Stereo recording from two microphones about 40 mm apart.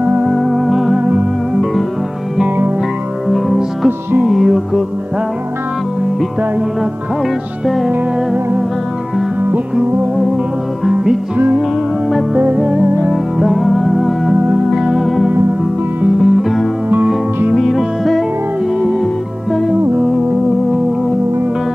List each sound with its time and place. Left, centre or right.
0.6 s music: centre
3.3 s music: centre
7.6 s music: centre
12.5 s music: right
13.1 s music: centre